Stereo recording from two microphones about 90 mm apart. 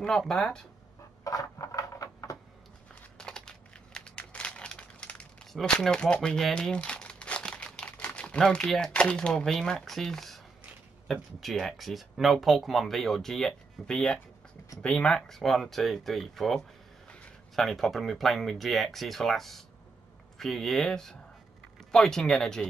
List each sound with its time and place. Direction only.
0.0 s speech: 5° left (ahead or behind)
1.2 s a sound: 40° left (ahead or behind)
3.2 s crumpling: 10° left (ahead or behind)
5.5 s speech: 5° left (ahead or behind)